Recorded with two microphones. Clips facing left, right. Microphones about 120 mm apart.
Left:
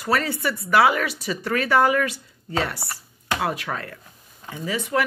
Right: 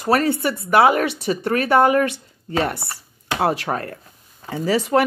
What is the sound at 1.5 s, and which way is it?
Speech, 55° right (ahead or behind).